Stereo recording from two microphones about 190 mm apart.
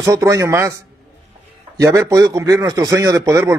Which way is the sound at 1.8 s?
15° right (ahead or behind).